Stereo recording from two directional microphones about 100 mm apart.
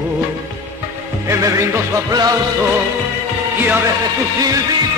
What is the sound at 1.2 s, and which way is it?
Music, 35° right (ahead or behind).